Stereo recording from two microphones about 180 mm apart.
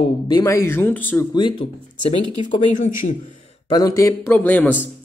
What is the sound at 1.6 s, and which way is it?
Speech, 35° left (ahead or behind).